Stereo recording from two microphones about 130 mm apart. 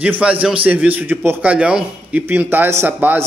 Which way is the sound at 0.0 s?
10° right (ahead or behind).